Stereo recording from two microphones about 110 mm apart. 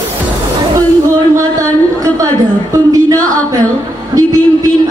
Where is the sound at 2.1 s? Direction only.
30° right (ahead or behind).